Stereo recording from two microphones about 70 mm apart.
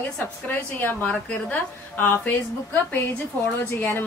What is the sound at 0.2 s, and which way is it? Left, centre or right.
A woman's voice, left.